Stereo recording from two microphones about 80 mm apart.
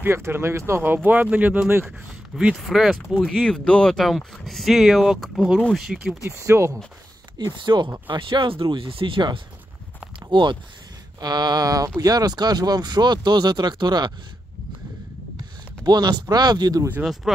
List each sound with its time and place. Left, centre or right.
0.0 s speech: right
1.9 s speech: centre
3.4 s speech: centre
6.3 s speech: right
7.3 s speech: right
8.1 s speech: right
11.1 s speech: right
15.8 s speech: right
17.0 s speech: centre